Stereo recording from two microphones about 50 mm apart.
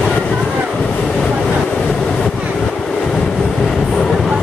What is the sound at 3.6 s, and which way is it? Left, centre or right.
Vehicle, centre.